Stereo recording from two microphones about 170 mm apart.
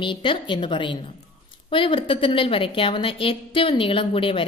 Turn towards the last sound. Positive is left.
turn(degrees=30)  # may be behind; listen again after turning